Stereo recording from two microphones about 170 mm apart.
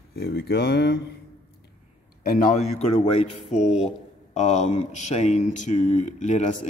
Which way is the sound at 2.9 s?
35° left (ahead or behind).